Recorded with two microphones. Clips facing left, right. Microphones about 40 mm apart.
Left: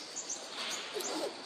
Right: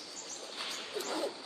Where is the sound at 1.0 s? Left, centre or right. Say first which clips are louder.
Right 2 dB; centre.